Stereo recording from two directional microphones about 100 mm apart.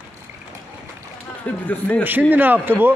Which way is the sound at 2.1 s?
20° right (ahead or behind).